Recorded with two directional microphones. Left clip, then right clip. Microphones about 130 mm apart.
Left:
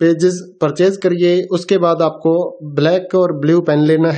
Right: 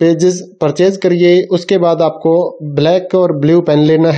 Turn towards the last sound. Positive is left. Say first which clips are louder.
# right 3 dB
turn(degrees=-25)  # may be behind; listen again after turning